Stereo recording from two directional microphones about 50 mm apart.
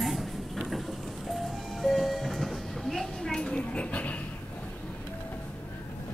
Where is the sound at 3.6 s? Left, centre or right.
Left.